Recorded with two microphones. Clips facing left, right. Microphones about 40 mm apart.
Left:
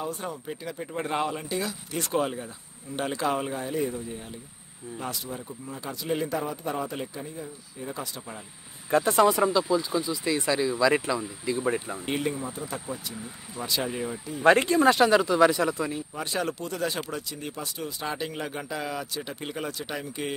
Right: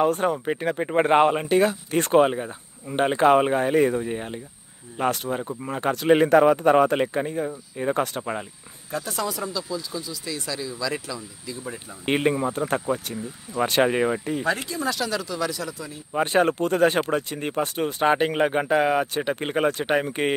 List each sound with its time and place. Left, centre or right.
0.0 s speech: right
8.9 s speech: left
12.1 s speech: right
14.4 s speech: left
16.1 s speech: right